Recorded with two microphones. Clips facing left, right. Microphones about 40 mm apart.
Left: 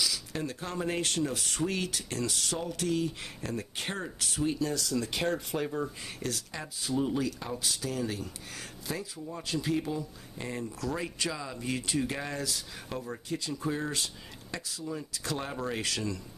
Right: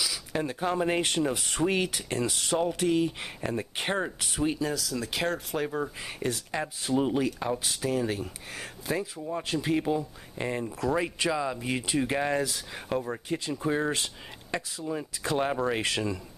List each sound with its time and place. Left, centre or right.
0.0 s speech: right
4.6 s speech: centre
5.6 s speech: right